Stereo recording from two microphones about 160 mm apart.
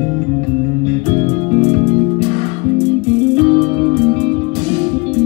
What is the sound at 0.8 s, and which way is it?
Music, 35° right (ahead or behind).